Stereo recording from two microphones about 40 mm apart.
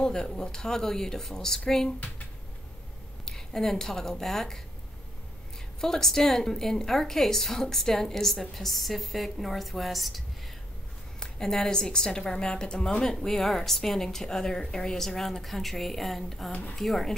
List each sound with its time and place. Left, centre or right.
0.0 s a woman's voice: centre
3.3 s a woman's voice: centre
5.8 s a woman's voice: centre
11.1 s a woman's voice: centre